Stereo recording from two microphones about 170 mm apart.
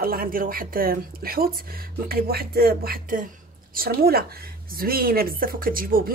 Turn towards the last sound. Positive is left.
turn(degrees=-55)  # may be behind; listen again after turning